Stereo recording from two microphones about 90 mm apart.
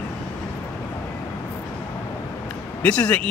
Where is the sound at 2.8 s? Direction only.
15° left (ahead or behind).